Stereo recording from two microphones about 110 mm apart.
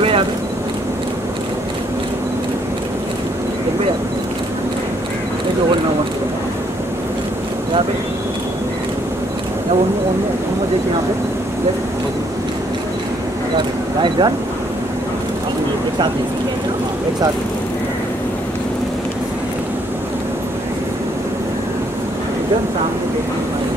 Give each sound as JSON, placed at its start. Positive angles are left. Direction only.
{"t": 14.0, "sound": "speech", "side_deg": -45}